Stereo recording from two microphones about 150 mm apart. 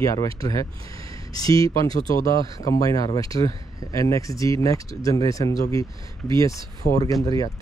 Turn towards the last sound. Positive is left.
turn(degrees=25)  # may be behind; listen again after turning